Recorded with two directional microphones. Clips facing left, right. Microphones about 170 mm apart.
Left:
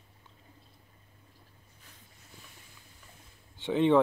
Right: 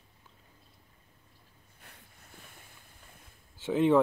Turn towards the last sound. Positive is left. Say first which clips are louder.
# even
turn(degrees=-5)  # may be behind; listen again after turning